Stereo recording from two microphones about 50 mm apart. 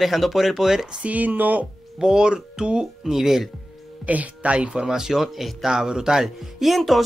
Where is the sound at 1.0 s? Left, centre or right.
Right.